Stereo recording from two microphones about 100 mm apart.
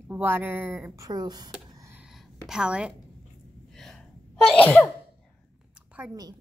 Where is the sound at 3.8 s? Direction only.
5° left (ahead or behind).